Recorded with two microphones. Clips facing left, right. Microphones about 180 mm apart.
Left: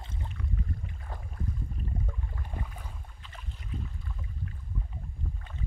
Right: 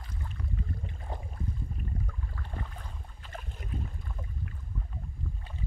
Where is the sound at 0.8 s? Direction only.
25° right (ahead or behind).